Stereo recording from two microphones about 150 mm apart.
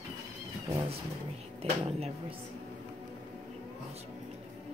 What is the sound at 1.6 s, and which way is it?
Speech, 45° right (ahead or behind).